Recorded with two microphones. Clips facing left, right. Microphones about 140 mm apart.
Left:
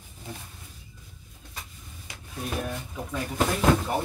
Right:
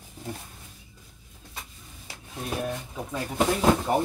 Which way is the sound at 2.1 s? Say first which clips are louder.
Right 1 dB; 35° right (ahead or behind).